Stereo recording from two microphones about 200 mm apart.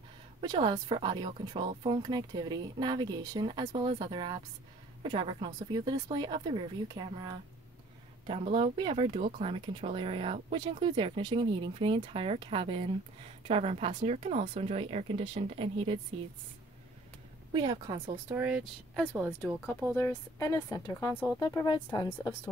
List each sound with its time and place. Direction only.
0.4 s speech: 20° right (ahead or behind)
17.5 s speech: 20° right (ahead or behind)
18.3 s speech: 10° right (ahead or behind)
19.9 s a woman's voice: 10° left (ahead or behind)